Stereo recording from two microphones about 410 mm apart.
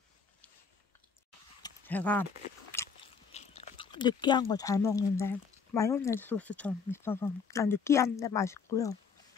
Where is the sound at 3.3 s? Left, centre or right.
Centre.